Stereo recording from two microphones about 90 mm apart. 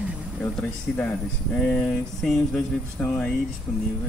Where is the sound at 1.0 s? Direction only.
15° left (ahead or behind).